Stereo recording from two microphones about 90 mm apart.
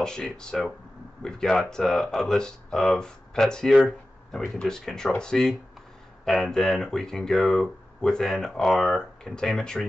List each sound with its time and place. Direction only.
0.0 s speech: 10° left (ahead or behind)